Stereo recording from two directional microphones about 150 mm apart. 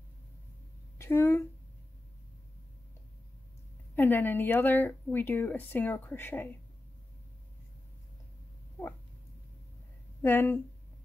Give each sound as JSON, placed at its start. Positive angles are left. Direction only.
{"t": 0.9, "sound": "speech", "side_deg": 20}
{"t": 3.9, "sound": "speech", "side_deg": 15}
{"t": 10.2, "sound": "speech", "side_deg": 15}